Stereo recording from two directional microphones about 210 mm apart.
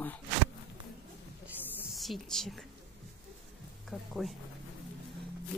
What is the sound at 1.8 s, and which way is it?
Speech, centre (ahead or behind).